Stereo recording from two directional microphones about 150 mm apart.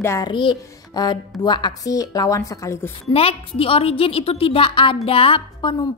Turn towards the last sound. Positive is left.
turn(degrees=35)  # may be behind; listen again after turning